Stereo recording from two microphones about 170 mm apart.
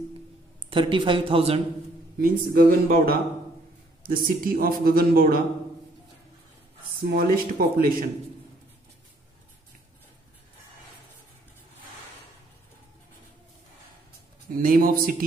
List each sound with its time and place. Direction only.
0.7 s speech: 30° right (ahead or behind)
2.1 s a man's voice: 60° right (ahead or behind)
7.0 s a man's voice: 60° right (ahead or behind)
14.5 s a man's voice: 55° right (ahead or behind)